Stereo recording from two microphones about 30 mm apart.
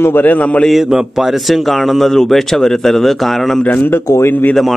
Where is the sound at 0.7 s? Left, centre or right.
Centre.